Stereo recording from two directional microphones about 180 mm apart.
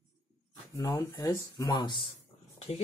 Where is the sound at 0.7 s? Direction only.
15° left (ahead or behind).